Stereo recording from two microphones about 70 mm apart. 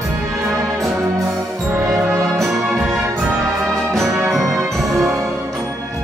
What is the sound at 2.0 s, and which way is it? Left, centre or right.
Music, right.